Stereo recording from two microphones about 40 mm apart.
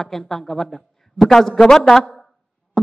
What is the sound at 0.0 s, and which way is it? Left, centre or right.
Speech, centre.